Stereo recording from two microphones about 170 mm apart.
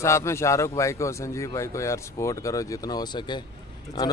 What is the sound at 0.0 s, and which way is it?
A man's voice, 15° left (ahead or behind).